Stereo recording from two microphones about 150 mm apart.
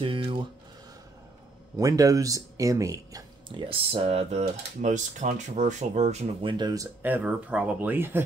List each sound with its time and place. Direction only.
0.0 s a sound: 35° right (ahead or behind)
1.8 s speech: 20° right (ahead or behind); by 6.5 s 50° right (ahead or behind)
6.5 s speech: 25° right (ahead or behind)
7.0 s speech: 10° right (ahead or behind)